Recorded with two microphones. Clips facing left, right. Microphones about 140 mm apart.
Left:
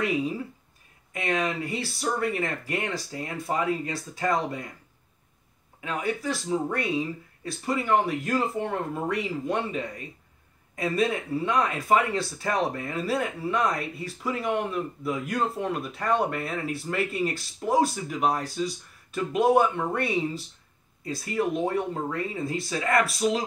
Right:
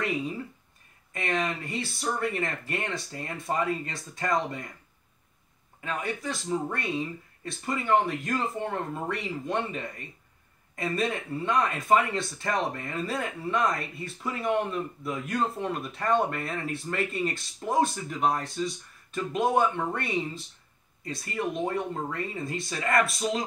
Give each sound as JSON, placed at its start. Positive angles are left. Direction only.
{"t": 1.1, "sound": "a man's voice", "side_deg": 5}
{"t": 5.8, "sound": "a man's voice", "side_deg": 5}